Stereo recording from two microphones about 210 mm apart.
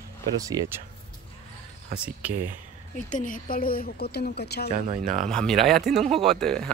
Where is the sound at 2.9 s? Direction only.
40° left (ahead or behind).